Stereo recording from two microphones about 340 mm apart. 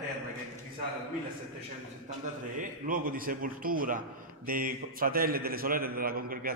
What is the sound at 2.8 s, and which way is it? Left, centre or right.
A man's voice, right.